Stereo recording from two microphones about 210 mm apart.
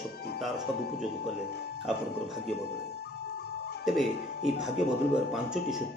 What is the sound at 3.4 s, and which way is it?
Music, 50° left (ahead or behind).